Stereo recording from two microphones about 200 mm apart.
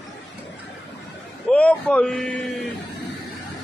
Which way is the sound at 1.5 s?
5° left (ahead or behind).